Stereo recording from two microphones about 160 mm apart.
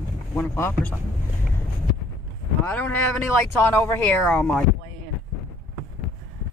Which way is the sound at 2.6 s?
10° left (ahead or behind).